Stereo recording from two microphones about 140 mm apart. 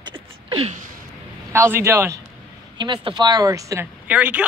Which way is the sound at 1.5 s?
20° right (ahead or behind).